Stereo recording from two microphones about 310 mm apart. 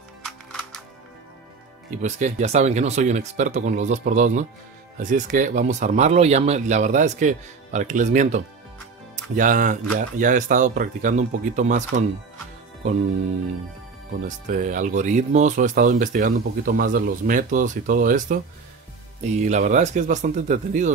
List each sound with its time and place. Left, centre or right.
2.0 s speech: right
14.5 s speech: right